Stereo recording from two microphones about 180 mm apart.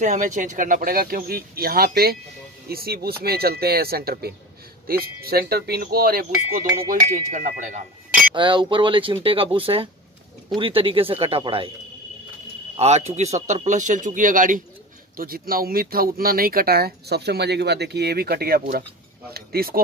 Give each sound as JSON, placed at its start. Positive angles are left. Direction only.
{"t": 0.0, "sound": "speech", "side_deg": -45}
{"t": 6.9, "sound": "speech", "side_deg": -45}
{"t": 8.4, "sound": "speech", "side_deg": -25}
{"t": 12.7, "sound": "speech", "side_deg": -35}